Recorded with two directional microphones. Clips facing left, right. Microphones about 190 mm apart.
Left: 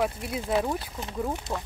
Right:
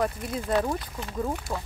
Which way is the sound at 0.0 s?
5° left (ahead or behind).